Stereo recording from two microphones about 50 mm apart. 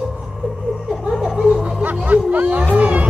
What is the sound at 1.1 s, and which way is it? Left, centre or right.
Chuckle, centre.